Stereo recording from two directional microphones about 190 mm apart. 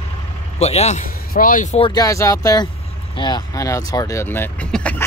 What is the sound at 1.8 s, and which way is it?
Speech, 20° left (ahead or behind).